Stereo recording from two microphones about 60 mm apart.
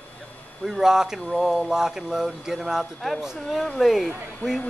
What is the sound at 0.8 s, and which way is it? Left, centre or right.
Speech, centre.